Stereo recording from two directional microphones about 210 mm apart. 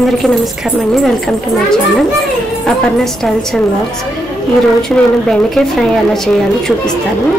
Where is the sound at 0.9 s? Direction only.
Centre (ahead or behind).